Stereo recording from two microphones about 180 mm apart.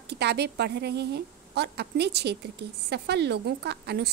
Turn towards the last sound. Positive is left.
turn(degrees=-65)  # may be behind; listen again after turning